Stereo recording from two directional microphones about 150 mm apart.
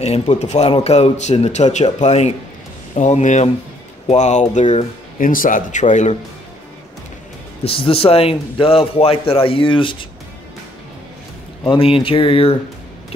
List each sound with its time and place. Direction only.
0.0 s speech: 50° left (ahead or behind)
7.6 s a man's voice: 40° left (ahead or behind)
11.7 s a man's voice: 35° left (ahead or behind)